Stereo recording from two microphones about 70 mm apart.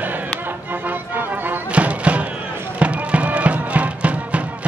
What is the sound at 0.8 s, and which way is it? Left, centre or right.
Music, right.